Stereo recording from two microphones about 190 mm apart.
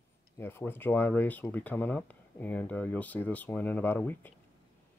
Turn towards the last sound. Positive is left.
turn(degrees=10)  # may be behind; listen again after turning